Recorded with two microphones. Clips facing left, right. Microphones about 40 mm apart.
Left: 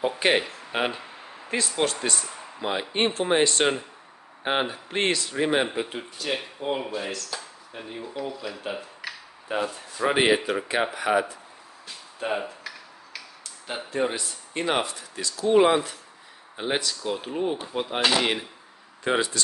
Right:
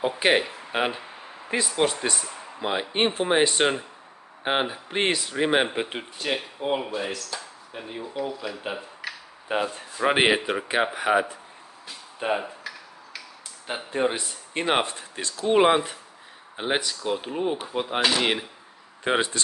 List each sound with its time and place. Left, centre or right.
0.0 s speech: centre
5.8 s speech: right
6.2 s speech: centre
9.5 s speech: right
13.7 s speech: centre
14.1 s speech: right
19.0 s speech: right